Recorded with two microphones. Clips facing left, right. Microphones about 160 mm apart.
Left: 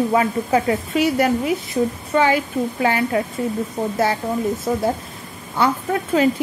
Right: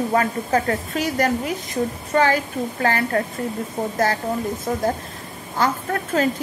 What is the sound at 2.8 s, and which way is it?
Speech, 10° left (ahead or behind).